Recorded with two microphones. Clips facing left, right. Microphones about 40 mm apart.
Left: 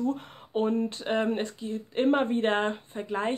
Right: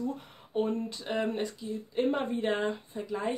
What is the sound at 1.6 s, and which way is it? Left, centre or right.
Speech, left.